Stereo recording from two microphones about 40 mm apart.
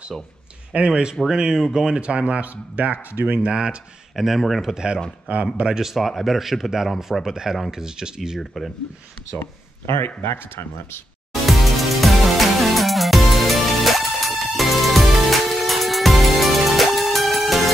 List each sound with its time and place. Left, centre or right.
0.7 s speech: right
3.4 s speech: right
4.1 s speech: centre
4.7 s speech: centre
5.3 s speech: right
5.8 s speech: centre
8.4 s speech: centre
9.4 s speech: left
11.4 s music: centre